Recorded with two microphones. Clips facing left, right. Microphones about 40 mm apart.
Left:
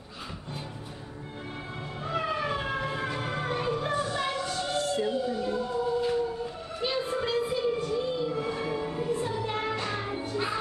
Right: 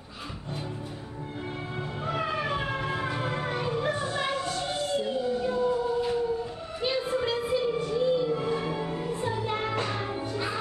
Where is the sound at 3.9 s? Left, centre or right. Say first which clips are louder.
Even; centre.